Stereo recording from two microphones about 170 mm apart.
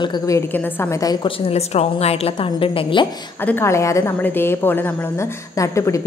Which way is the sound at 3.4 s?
15° left (ahead or behind).